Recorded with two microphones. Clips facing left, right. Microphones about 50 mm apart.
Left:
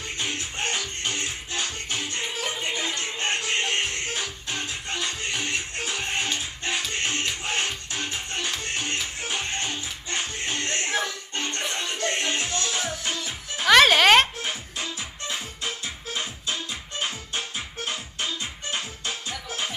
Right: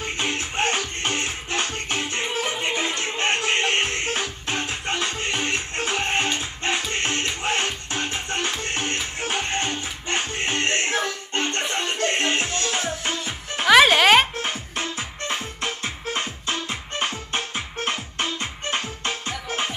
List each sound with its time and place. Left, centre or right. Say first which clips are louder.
0.0 s music: right 4 dB; right
13.7 s music: right 2 dB; centre
14.8 s music: right 4 dB; right